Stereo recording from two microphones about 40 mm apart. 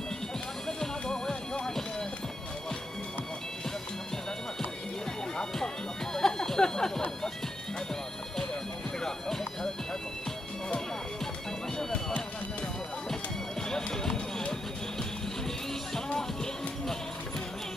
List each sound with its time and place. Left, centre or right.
0.7 s music: centre
6.1 s music: centre
9.0 s music: centre
13.1 s music: centre
13.9 s run: centre
15.0 s music: centre